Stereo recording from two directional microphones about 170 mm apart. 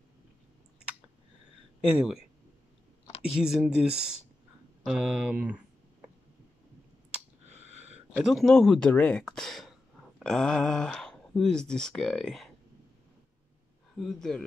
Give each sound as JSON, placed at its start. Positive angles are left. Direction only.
{"t": 1.8, "sound": "speech", "side_deg": -5}
{"t": 3.3, "sound": "speech", "side_deg": -5}
{"t": 7.4, "sound": "a sound", "side_deg": -40}
{"t": 8.2, "sound": "speech", "side_deg": 0}
{"t": 13.9, "sound": "speech", "side_deg": 0}